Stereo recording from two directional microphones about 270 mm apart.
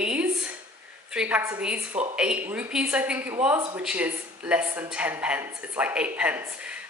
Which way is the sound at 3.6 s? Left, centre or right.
Centre.